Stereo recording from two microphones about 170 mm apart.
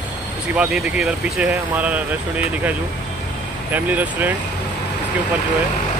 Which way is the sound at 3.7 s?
10° right (ahead or behind).